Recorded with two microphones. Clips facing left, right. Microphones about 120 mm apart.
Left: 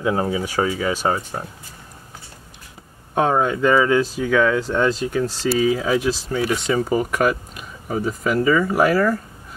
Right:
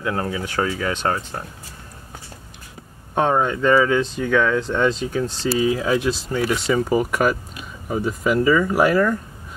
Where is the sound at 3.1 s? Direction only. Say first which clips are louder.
Left 1 dB; 5° left (ahead or behind).